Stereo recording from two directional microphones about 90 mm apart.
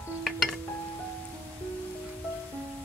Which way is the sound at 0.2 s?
Centre (ahead or behind).